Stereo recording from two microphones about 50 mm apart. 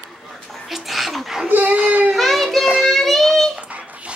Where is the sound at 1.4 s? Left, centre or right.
Right.